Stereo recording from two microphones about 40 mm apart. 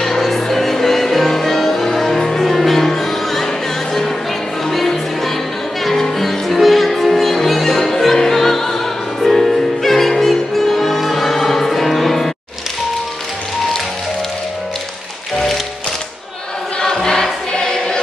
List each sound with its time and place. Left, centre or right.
0.0 s music: centre
4.6 s music: centre
16.8 s choir: centre